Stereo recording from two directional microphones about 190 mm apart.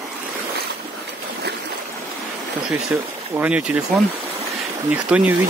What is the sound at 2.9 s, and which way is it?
Speech, 10° right (ahead or behind).